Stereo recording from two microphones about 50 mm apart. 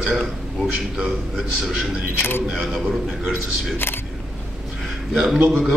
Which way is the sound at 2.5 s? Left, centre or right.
Centre.